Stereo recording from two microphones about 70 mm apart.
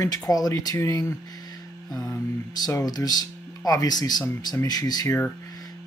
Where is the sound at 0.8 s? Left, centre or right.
Left.